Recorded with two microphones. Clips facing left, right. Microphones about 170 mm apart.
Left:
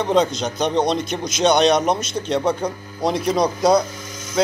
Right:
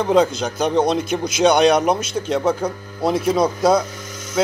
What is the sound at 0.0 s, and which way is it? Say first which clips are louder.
A man's voice: right 2 dB; 5° right (ahead or behind).